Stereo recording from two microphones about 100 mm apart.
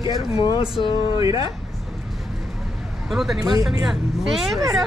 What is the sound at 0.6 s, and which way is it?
Speech, 55° left (ahead or behind).